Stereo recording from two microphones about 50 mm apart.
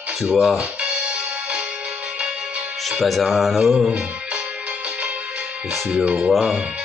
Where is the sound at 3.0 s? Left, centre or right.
Centre.